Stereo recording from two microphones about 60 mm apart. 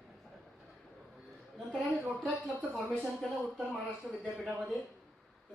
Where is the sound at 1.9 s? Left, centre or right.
Centre.